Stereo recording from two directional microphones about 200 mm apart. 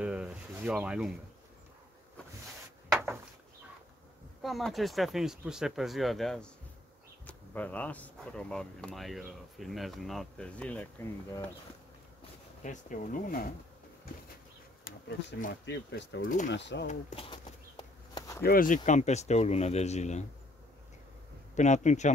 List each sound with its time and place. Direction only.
0.0 s speech: 5° right (ahead or behind)
4.4 s speech: centre (ahead or behind)
12.6 s speech: 40° left (ahead or behind)
14.9 s speech: 50° left (ahead or behind)
16.2 s speech: 40° left (ahead or behind)
16.4 s speech: 60° left (ahead or behind)
16.8 s a sound: 30° left (ahead or behind)
18.4 s speech: 45° left (ahead or behind)
21.5 s speech: 35° left (ahead or behind)